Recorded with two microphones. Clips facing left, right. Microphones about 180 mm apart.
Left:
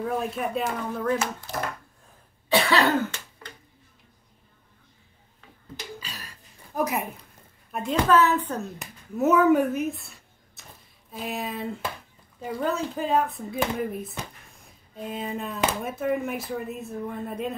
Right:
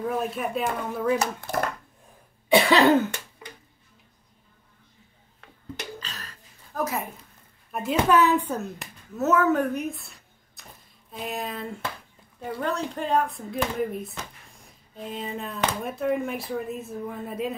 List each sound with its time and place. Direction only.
0.0 s speech: centre (ahead or behind)
2.5 s cough: 20° right (ahead or behind)
5.9 s throat clearing: 10° left (ahead or behind)
7.9 s speech: 15° right (ahead or behind)
9.1 s speech: 15° left (ahead or behind)